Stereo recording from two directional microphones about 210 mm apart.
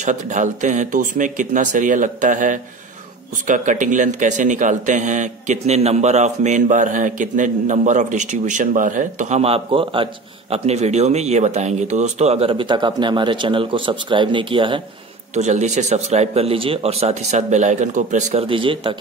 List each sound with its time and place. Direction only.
0.0 s a man's voice: 35° right (ahead or behind)